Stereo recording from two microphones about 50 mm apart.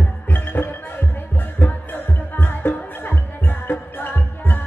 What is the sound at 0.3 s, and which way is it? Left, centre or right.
Music, left.